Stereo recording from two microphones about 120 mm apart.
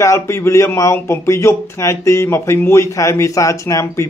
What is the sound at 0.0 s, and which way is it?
Speech, 25° left (ahead or behind).